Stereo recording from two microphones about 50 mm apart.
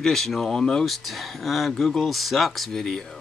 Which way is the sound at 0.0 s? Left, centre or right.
Centre.